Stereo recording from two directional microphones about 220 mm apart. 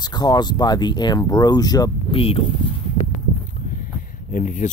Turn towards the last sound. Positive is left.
turn(degrees=35)  # may be behind; listen again after turning